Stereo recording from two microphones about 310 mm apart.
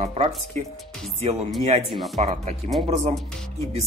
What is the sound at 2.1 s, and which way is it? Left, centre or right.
Speech, right.